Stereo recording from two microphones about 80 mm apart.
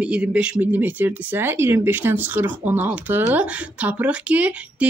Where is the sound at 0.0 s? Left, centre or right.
Centre.